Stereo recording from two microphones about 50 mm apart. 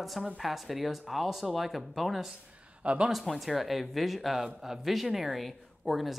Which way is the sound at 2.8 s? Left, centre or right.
Right.